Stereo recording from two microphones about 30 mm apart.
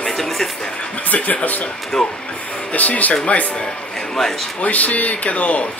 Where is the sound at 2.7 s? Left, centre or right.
Left.